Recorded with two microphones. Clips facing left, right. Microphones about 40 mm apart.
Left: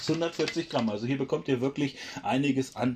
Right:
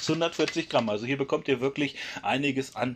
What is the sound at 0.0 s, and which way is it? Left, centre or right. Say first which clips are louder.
Speech: right 2 dB; right.